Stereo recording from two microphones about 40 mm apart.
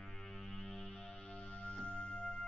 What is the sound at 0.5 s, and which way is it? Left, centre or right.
Music, centre.